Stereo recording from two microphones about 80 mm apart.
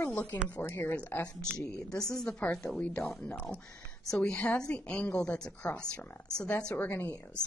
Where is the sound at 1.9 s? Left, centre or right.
Centre.